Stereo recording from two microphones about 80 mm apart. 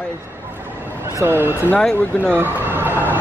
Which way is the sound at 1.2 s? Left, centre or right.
Right.